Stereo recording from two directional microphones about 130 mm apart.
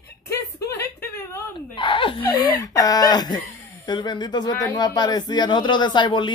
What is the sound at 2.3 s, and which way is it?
A man's voice, 30° left (ahead or behind).